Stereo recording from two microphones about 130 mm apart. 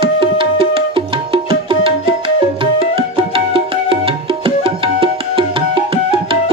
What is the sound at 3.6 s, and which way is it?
Music, 45° right (ahead or behind).